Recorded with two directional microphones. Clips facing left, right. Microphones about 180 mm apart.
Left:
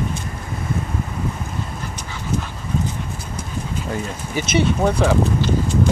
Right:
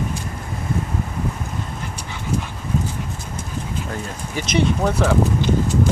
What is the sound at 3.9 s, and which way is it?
Speech, 5° left (ahead or behind).